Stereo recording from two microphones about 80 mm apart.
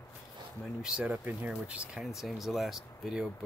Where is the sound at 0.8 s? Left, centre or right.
Centre.